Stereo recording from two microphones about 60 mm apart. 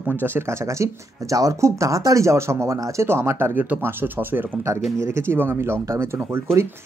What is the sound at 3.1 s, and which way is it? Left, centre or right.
Speech, right.